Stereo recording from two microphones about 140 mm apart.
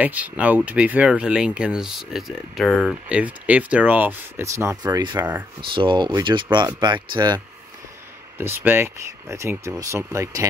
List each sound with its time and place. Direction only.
0.0 s speech: 10° right (ahead or behind); by 7.4 s 30° right (ahead or behind)
8.4 s speech: 15° right (ahead or behind)